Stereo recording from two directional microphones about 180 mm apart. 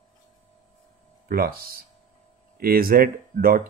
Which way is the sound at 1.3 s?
55° right (ahead or behind).